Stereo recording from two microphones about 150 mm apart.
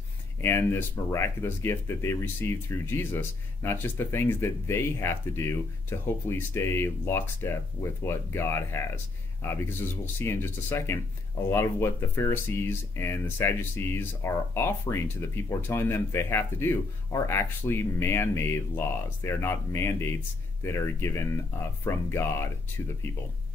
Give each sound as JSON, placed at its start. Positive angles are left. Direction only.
{"t": 0.4, "sound": "speech", "side_deg": 15}